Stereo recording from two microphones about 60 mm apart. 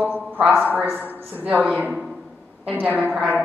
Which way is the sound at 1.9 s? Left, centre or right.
Centre.